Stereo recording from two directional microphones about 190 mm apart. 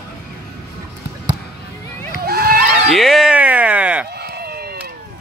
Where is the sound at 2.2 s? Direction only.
55° right (ahead or behind).